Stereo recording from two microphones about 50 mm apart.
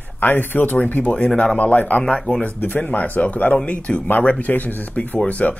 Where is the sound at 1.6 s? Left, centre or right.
Left.